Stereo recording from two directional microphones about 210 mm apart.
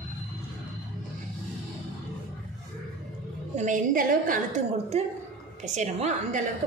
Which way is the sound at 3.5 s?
40° right (ahead or behind).